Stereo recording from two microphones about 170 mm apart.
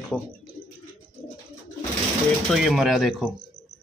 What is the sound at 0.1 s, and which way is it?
Speech, 10° right (ahead or behind).